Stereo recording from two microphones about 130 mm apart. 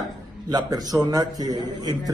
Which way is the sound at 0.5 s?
30° right (ahead or behind).